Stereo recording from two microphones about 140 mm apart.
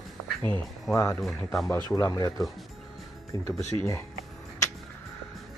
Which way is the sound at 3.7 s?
25° left (ahead or behind).